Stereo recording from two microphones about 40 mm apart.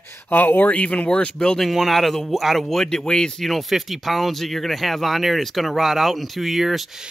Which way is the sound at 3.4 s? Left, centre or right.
Centre.